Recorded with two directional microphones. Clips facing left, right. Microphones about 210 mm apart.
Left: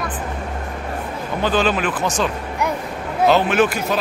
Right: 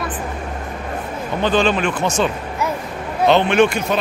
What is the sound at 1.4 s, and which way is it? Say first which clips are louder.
A man's voice: right 2 dB; 5° left (ahead or behind).